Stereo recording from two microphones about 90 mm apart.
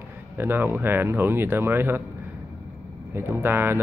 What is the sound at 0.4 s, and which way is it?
Speech, 25° right (ahead or behind).